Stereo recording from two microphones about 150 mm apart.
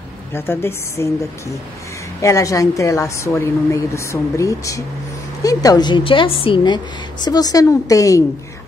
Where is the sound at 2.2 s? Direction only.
20° left (ahead or behind).